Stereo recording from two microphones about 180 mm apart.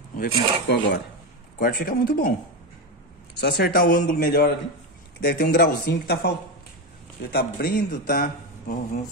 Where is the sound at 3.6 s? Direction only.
55° left (ahead or behind).